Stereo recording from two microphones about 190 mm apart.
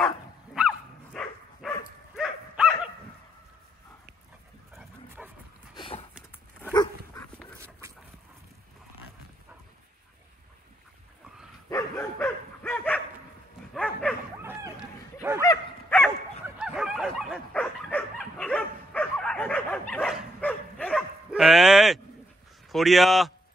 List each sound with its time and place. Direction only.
0.6 s dog: centre (ahead or behind)
5.2 s dog: 5° right (ahead or behind)
5.8 s horse: 30° left (ahead or behind)
11.7 s dog: 15° left (ahead or behind)
14.4 s run: 10° right (ahead or behind)
15.4 s dog: 15° left (ahead or behind)
16.4 s bow-wow: 5° right (ahead or behind)
19.9 s dog: 5° left (ahead or behind)
22.7 s a man's voice: centre (ahead or behind)